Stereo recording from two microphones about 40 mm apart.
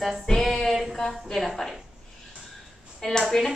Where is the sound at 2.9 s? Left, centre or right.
Centre.